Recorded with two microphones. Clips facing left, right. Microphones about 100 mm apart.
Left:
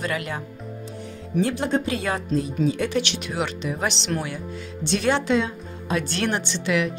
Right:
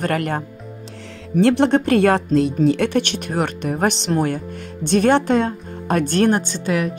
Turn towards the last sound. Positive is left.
turn(degrees=-40)  # may be behind; listen again after turning